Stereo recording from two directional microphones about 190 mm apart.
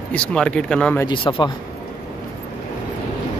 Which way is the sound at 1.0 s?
25° left (ahead or behind).